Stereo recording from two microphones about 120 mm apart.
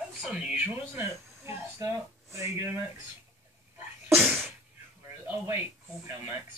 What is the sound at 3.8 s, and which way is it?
Sneeze, 15° right (ahead or behind).